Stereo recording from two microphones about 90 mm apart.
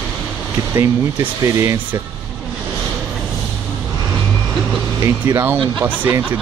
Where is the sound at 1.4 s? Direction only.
40° right (ahead or behind).